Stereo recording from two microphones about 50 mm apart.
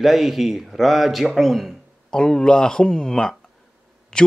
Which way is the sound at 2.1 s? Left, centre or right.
Centre.